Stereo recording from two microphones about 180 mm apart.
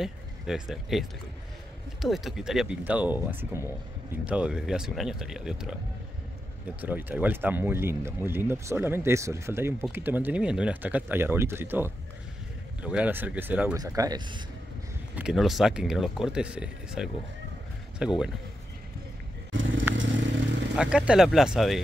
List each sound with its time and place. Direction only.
0.0 s speech: centre (ahead or behind)
6.8 s speech: 10° right (ahead or behind)
13.7 s speech: 20° right (ahead or behind)
15.1 s speech: 5° right (ahead or behind)
20.0 s motorcycle: 85° right
20.7 s speech: 5° right (ahead or behind)